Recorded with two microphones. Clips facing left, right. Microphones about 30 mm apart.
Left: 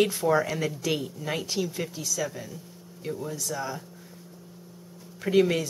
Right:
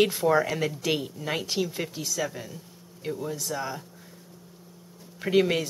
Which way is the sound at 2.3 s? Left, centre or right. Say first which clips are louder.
Even; centre.